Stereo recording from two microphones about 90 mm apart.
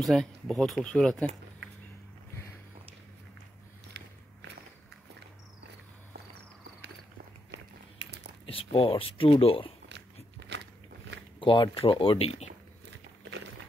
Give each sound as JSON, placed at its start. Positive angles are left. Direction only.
{"t": 0.0, "sound": "speech", "side_deg": 5}
{"t": 8.5, "sound": "speech", "side_deg": 90}
{"t": 11.3, "sound": "speech", "side_deg": 60}